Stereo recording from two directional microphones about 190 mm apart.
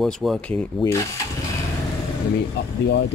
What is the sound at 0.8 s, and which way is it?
Speech, 20° left (ahead or behind).